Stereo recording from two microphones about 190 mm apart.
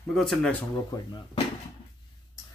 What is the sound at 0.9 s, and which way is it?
Speech, 25° left (ahead or behind).